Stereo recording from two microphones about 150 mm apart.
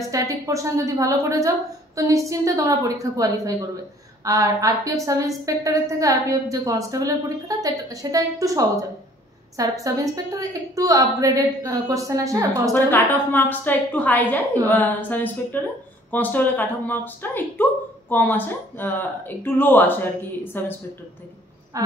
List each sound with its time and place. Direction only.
0.1 s a woman's voice: 20° right (ahead or behind)
12.7 s speech: 15° left (ahead or behind)
21.7 s a sound: 25° right (ahead or behind)